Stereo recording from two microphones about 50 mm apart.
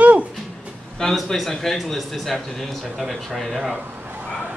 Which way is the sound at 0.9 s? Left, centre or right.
Centre.